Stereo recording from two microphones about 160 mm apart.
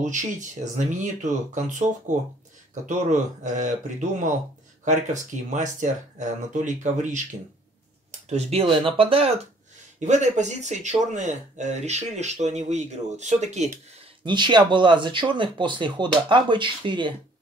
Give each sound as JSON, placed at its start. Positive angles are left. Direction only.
{"t": 0.0, "sound": "speech", "side_deg": -50}
{"t": 4.8, "sound": "speech", "side_deg": -50}
{"t": 8.3, "sound": "speech", "side_deg": -40}
{"t": 9.9, "sound": "speech", "side_deg": -45}
{"t": 14.2, "sound": "speech", "side_deg": -30}